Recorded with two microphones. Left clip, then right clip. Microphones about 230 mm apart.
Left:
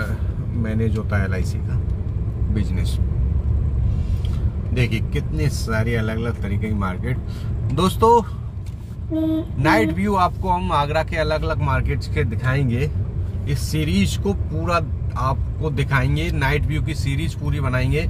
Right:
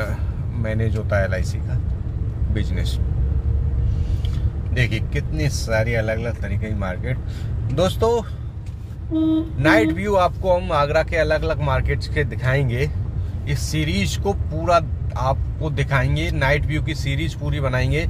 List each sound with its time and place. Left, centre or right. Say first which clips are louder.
0.7 s speech: right 2 dB; centre
4.7 s speech: right 1 dB; centre
9.6 s speech: right 1 dB; centre